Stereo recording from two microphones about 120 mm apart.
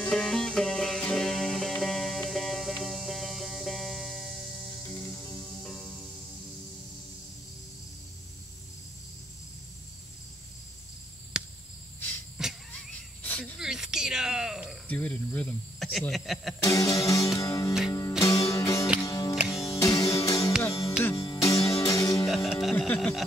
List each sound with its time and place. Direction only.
0.0 s music: 5° left (ahead or behind)
4.8 s music: 25° left (ahead or behind)
5.6 s music: 5° left (ahead or behind)
11.3 s cricket: 5° right (ahead or behind)
12.4 s a sound: 5° right (ahead or behind)
13.2 s cricket: 15° left (ahead or behind)
13.6 s a sound: 5° right (ahead or behind)
14.9 s cricket: 10° left (ahead or behind)
16.1 s speech: centre (ahead or behind)
16.6 s music: 30° left (ahead or behind)
22.2 s music: centre (ahead or behind)